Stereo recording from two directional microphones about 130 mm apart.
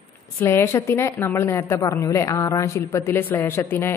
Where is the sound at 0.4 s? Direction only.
15° left (ahead or behind).